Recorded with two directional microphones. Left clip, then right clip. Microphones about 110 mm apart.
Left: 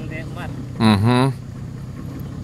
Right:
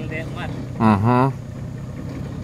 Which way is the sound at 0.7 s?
20° left (ahead or behind).